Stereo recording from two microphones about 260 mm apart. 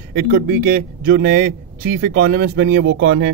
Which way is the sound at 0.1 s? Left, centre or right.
Right.